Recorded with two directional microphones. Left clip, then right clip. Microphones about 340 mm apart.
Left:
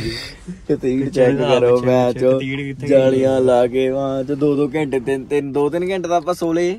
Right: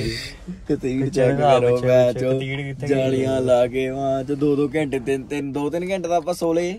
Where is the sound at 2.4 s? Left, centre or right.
Centre.